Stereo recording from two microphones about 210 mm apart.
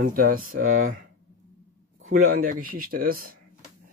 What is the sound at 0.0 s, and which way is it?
Speech, 40° right (ahead or behind).